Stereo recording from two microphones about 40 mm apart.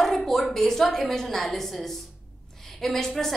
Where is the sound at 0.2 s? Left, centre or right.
Centre.